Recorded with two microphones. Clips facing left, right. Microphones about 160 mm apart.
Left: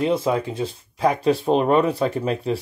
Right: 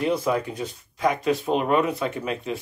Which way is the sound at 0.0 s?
25° left (ahead or behind).